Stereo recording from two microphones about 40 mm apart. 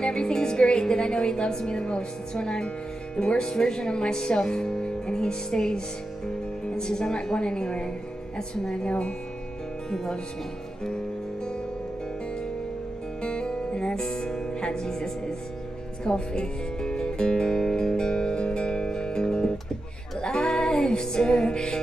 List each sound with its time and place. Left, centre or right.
0.0 s music: left
3.2 s speech: centre
6.8 s speech: centre
13.2 s music: left